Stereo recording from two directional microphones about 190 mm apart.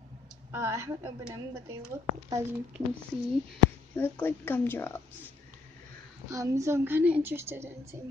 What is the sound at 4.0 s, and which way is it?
A woman's voice, 10° left (ahead or behind).